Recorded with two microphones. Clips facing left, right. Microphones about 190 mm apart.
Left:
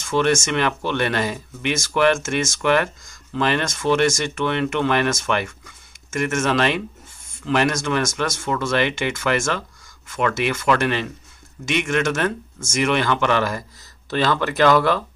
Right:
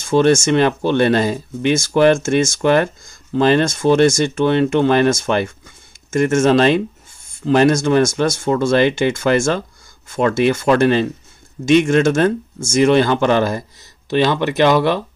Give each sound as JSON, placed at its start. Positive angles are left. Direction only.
{"t": 0.0, "sound": "speech", "side_deg": -35}